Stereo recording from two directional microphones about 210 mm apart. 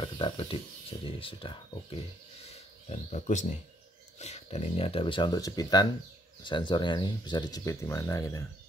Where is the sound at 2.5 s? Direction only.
30° left (ahead or behind).